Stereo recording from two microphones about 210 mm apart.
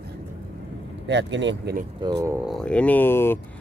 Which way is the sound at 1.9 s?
15° right (ahead or behind).